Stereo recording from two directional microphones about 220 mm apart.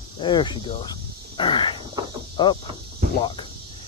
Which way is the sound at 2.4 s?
20° left (ahead or behind).